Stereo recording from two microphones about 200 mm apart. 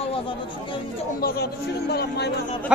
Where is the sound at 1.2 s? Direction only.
50° left (ahead or behind).